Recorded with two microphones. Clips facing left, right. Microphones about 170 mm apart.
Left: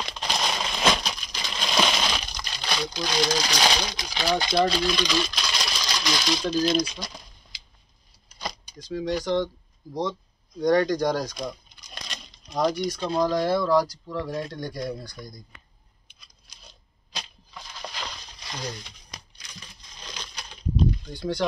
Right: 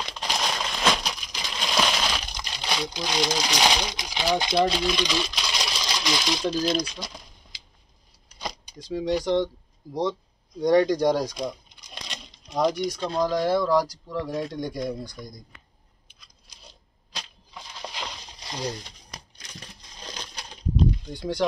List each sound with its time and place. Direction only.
0.2 s crushing: centre (ahead or behind)
1.0 s crushing: 10° right (ahead or behind)
2.3 s speech: 15° right (ahead or behind)
6.6 s speech: centre (ahead or behind)
8.7 s speech: 30° right (ahead or behind)
10.6 s a sound: 25° right (ahead or behind)
12.6 s speech: 20° right (ahead or behind)
13.0 s speech: 5° left (ahead or behind)
13.3 s speech: 15° right (ahead or behind)
17.6 s a sound: 20° right (ahead or behind)
18.7 s a sound: 35° right (ahead or behind)
20.7 s a sound: 15° right (ahead or behind)